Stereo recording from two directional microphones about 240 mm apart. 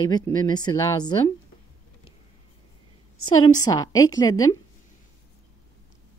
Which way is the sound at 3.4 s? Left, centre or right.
Centre.